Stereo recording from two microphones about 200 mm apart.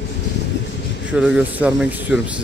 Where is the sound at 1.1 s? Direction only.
5° right (ahead or behind).